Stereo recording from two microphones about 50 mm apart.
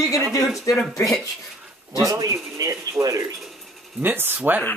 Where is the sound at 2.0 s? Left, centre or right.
Right.